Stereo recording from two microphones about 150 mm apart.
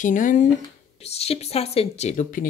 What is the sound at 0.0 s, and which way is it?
Speech, 60° left (ahead or behind).